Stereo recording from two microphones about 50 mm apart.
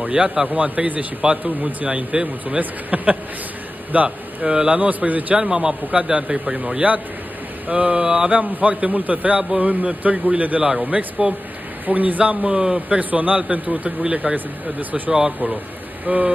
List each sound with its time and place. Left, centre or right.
0.0 s a man's voice: right
0.5 s speech: right
5.4 s speech: centre
8.3 s speech: right
11.8 s speech: right
12.4 s a man's voice: centre
13.1 s speech: right
15.0 s a man's voice: centre
16.1 s speech: right